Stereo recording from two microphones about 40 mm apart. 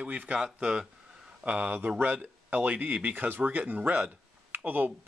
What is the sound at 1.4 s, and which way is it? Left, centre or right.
Speech, right.